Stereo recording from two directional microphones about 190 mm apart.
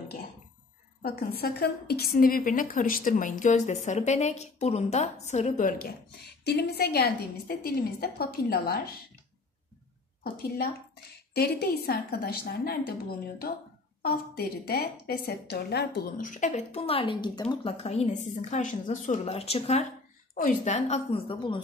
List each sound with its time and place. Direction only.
1.0 s a woman's voice: 55° left (ahead or behind)
6.4 s a woman's voice: 60° left (ahead or behind)
11.3 s a woman's voice: 55° left (ahead or behind)
14.0 s a woman's voice: 50° left (ahead or behind); by 21.5 s 25° left (ahead or behind)